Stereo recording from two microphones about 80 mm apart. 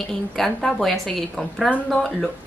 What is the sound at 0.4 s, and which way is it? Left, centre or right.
A woman's voice, centre.